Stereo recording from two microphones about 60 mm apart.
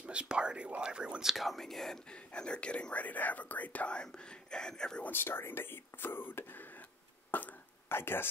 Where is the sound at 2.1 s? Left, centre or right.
Centre.